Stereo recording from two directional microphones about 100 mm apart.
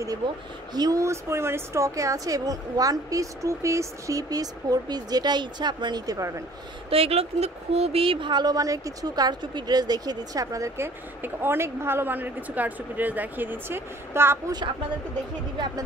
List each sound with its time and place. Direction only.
0.2 s speech: 50° right (ahead or behind)
0.7 s speech: 35° right (ahead or behind)
6.9 s speech: 85° right; by 8.3 s 65° right (ahead or behind)
8.3 s a woman's voice: 45° right (ahead or behind); by 14.4 s 25° right (ahead or behind)